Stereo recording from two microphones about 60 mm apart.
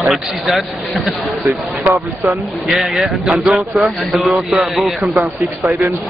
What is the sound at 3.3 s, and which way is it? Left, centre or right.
Speech, right.